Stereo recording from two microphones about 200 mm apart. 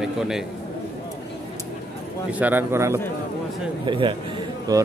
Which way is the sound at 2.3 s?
10° right (ahead or behind).